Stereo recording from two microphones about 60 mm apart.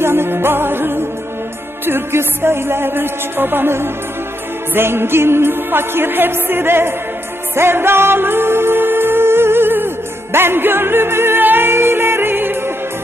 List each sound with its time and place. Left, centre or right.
0.0 s music: right